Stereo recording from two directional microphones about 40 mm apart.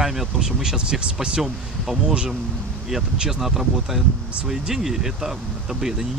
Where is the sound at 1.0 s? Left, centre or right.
Right.